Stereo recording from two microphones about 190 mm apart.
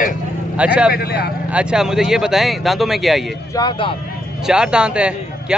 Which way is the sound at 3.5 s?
25° left (ahead or behind).